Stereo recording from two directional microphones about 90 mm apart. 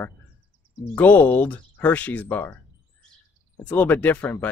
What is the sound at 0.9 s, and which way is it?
Speech, 20° left (ahead or behind).